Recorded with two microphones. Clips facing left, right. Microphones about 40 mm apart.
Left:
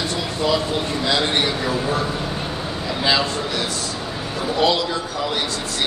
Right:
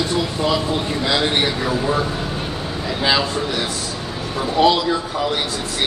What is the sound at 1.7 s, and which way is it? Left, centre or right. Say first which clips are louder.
Speech: right 2 dB; centre.